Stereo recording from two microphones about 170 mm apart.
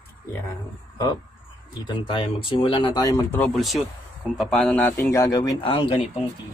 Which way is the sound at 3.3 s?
10° left (ahead or behind).